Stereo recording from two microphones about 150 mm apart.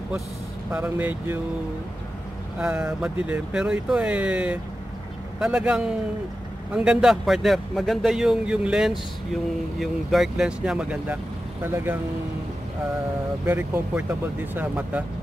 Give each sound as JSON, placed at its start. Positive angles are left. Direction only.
{"t": 0.7, "sound": "speech", "side_deg": -10}
{"t": 2.6, "sound": "speech", "side_deg": -5}
{"t": 13.5, "sound": "speech", "side_deg": -15}